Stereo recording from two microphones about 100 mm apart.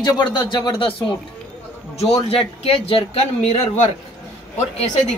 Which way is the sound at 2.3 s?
70° left (ahead or behind).